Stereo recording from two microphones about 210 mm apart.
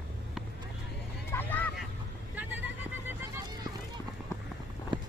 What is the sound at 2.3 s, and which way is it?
Vehicle, 10° right (ahead or behind).